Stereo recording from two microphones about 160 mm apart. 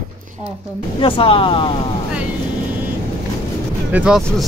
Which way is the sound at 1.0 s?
35° left (ahead or behind).